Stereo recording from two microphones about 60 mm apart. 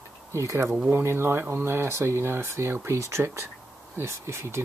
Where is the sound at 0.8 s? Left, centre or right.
Right.